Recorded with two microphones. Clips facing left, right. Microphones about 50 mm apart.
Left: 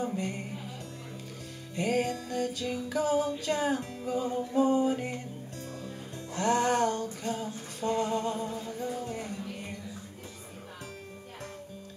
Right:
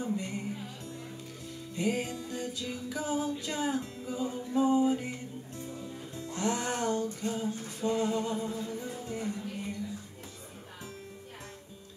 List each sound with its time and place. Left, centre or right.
1.8 s music: left
4.3 s music: left
6.3 s music: left